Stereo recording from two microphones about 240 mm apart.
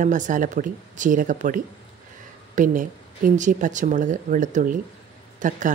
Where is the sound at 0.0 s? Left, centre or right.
Right.